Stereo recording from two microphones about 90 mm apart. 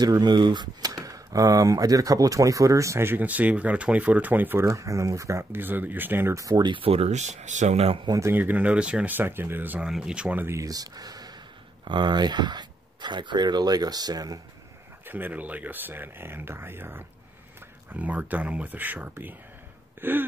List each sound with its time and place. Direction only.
0.0 s speech: 50° right (ahead or behind); by 4.6 s 20° right (ahead or behind)
4.6 s speech: 35° right (ahead or behind)
6.3 s speech: 35° right (ahead or behind)
6.6 s speech: 80° right
7.8 s speech: 90° right
8.3 s speech: 20° right (ahead or behind)
9.1 s speech: 25° right (ahead or behind)
9.8 s speech: 10° right (ahead or behind)
10.5 s speech: 40° right (ahead or behind)
15.0 s speech: 20° right (ahead or behind)